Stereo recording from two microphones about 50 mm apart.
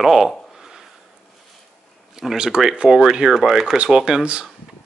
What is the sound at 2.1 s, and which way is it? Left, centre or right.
Speech, centre.